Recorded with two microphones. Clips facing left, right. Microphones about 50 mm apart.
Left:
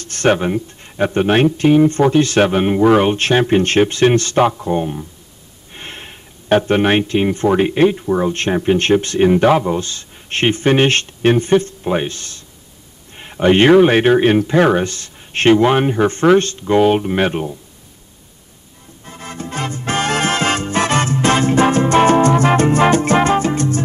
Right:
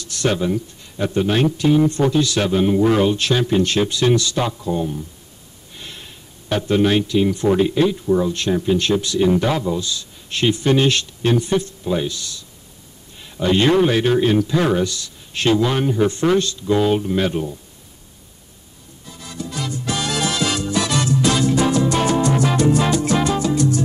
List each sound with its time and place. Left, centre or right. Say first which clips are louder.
0.0 s speech: left 5 dB; left
19.0 s music: left 3 dB; left